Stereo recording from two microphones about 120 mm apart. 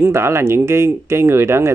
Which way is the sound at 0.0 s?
20° right (ahead or behind).